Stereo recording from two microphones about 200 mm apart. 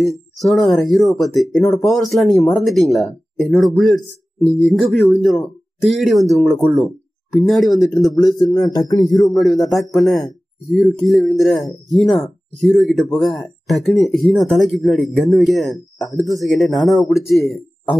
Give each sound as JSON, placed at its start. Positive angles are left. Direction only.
{"t": 0.0, "sound": "speech", "side_deg": 0}
{"t": 8.1, "sound": "a man's voice", "side_deg": 20}
{"t": 9.2, "sound": "a man's voice", "side_deg": 0}